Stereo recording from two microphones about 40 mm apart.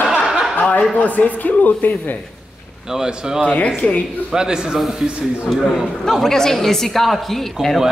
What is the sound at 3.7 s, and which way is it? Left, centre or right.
Speech, left.